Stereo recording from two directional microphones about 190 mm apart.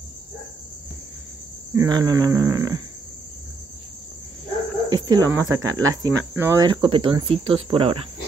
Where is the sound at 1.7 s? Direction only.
20° right (ahead or behind).